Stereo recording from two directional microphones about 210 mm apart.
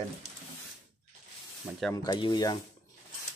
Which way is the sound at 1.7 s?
5° right (ahead or behind).